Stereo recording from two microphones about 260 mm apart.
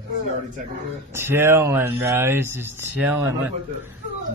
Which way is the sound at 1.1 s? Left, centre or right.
Centre.